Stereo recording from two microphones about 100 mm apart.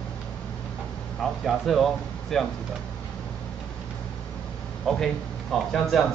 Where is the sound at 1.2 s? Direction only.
Centre (ahead or behind).